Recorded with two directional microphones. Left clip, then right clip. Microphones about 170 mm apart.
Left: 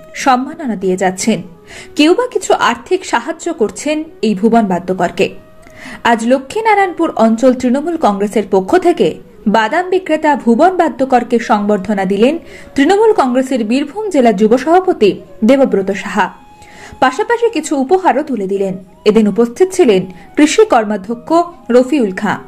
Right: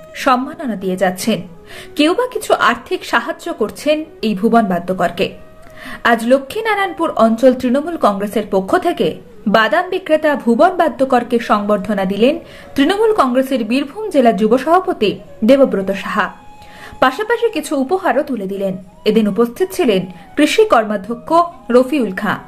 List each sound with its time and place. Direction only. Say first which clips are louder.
0.1 s speech: left 2 dB; 15° left (ahead or behind)